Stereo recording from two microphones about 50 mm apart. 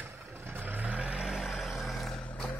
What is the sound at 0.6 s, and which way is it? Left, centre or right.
Vehicle, right.